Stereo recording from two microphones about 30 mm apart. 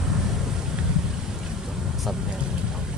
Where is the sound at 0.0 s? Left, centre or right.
Centre.